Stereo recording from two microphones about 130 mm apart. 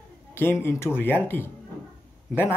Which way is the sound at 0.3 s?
15° left (ahead or behind).